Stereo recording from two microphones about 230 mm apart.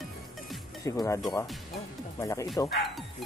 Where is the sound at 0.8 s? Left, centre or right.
Centre.